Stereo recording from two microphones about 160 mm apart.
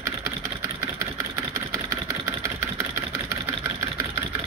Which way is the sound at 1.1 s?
15° right (ahead or behind).